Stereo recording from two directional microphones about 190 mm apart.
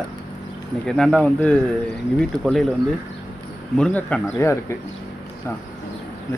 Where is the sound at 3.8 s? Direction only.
5° left (ahead or behind).